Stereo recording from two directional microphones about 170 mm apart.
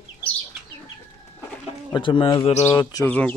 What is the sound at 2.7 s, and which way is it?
Speech, 25° left (ahead or behind).